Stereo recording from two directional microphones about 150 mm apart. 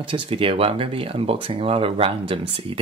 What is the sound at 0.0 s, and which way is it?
Speech, 35° right (ahead or behind).